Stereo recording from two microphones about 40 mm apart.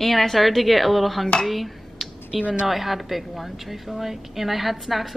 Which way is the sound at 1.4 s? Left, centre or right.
Centre.